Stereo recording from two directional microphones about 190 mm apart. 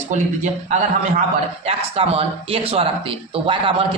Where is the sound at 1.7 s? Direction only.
30° right (ahead or behind).